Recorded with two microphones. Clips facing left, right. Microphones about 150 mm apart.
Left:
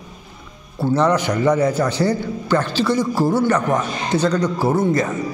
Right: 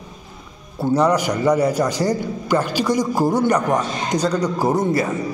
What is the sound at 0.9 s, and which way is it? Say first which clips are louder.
A man's voice: even; 10° right (ahead or behind).